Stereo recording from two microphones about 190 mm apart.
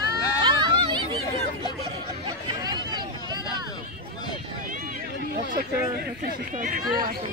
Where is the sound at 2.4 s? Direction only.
20° right (ahead or behind).